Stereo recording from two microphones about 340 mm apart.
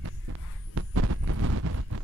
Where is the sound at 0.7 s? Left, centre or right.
Right.